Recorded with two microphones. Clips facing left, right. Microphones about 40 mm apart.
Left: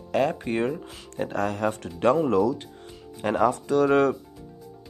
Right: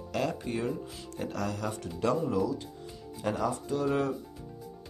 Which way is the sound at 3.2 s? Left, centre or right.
Left.